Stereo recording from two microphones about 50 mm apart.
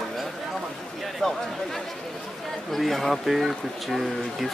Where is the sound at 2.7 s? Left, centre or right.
Centre.